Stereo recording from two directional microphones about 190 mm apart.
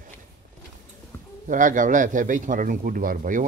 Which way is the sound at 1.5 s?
45° right (ahead or behind).